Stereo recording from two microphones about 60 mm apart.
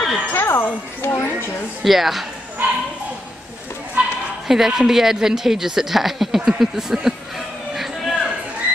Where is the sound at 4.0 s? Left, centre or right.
Centre.